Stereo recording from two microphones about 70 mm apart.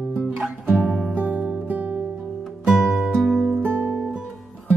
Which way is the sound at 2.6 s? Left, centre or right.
Centre.